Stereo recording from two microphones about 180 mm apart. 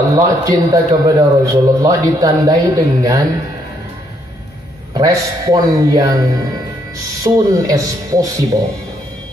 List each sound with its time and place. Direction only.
0.1 s a man's voice: 20° right (ahead or behind)
4.9 s a man's voice: 20° right (ahead or behind)